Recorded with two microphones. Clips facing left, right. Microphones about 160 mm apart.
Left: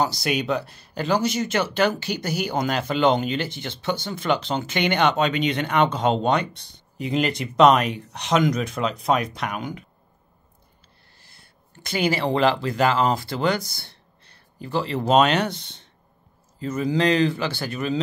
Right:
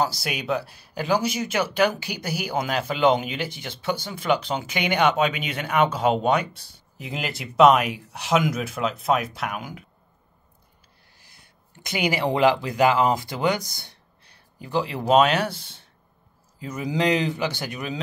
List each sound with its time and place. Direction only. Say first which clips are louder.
0.0 s speech: left 3 dB; 5° right (ahead or behind)
11.1 s speech: even; 15° right (ahead or behind)